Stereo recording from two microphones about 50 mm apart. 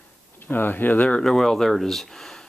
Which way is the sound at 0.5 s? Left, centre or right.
Left.